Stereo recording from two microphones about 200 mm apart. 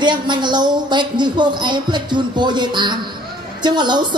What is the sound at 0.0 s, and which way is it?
Speech, 20° right (ahead or behind).